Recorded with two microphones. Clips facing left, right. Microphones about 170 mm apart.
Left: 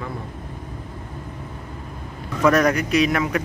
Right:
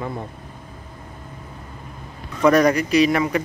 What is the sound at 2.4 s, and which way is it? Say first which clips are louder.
Speech: right 2 dB; centre (ahead or behind).